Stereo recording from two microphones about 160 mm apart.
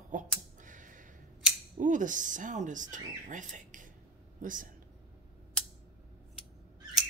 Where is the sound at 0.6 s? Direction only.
55° right (ahead or behind).